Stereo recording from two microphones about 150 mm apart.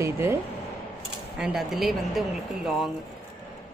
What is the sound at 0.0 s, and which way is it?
Speech, 15° right (ahead or behind).